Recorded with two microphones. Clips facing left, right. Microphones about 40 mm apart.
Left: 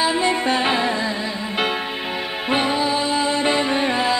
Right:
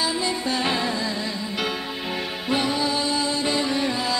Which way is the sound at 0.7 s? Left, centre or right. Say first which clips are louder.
Left 4 dB; left.